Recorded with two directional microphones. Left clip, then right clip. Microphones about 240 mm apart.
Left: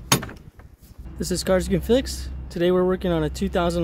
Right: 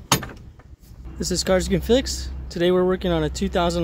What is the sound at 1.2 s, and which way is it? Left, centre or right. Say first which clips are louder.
Speech: right 1 dB; centre.